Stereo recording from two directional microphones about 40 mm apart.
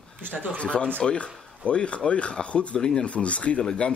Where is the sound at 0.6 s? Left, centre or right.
Left.